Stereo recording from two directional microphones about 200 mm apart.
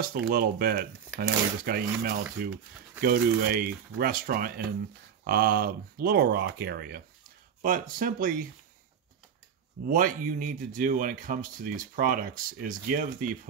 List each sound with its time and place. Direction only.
0.0 s speech: 45° right (ahead or behind)
8.0 s speech: 45° right (ahead or behind)
9.8 s speech: 45° right (ahead or behind)